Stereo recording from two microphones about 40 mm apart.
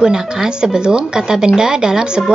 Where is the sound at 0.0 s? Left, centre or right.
Centre.